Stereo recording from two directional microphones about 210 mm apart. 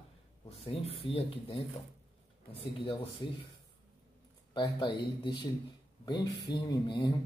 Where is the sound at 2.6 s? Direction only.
25° left (ahead or behind).